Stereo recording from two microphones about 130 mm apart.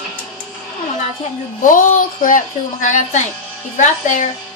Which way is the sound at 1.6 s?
90° left.